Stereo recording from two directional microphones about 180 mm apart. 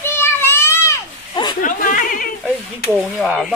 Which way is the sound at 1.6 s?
50° left (ahead or behind).